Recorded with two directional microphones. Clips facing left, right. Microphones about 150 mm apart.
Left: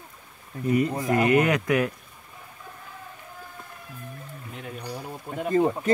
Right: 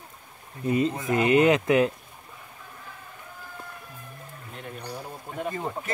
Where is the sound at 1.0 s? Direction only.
20° right (ahead or behind).